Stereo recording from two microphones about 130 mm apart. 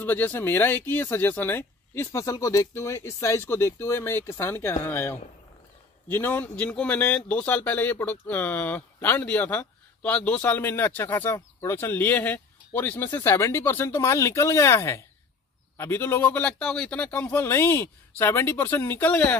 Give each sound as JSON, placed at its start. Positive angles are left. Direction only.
{"t": 0.0, "sound": "speech", "side_deg": 15}